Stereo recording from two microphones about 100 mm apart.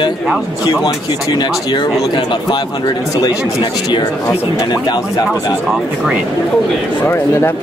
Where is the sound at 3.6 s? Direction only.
50° left (ahead or behind).